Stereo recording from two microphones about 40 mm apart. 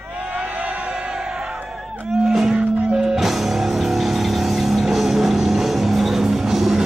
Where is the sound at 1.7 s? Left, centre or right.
Centre.